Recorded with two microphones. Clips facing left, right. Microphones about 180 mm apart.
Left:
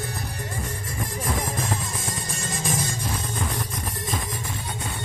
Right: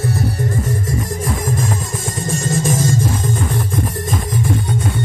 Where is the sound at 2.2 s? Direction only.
45° right (ahead or behind).